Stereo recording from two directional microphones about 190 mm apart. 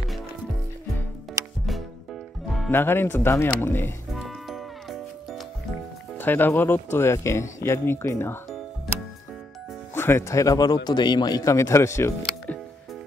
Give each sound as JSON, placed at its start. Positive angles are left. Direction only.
{"t": 1.4, "sound": "music", "side_deg": -15}
{"t": 2.4, "sound": "music", "side_deg": 0}
{"t": 2.7, "sound": "speech", "side_deg": 10}
{"t": 4.1, "sound": "music", "side_deg": 0}
{"t": 6.1, "sound": "speech", "side_deg": 10}
{"t": 9.9, "sound": "speech", "side_deg": 10}